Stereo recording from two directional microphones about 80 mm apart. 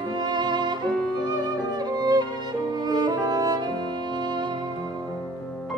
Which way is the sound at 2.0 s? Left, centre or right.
Right.